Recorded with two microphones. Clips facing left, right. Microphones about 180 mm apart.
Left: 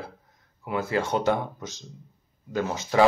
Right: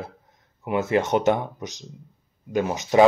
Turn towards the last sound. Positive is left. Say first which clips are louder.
# right 4 dB
turn(degrees=-20)  # may be behind; listen again after turning